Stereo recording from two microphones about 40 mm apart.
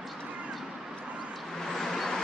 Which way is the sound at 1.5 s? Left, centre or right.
Centre.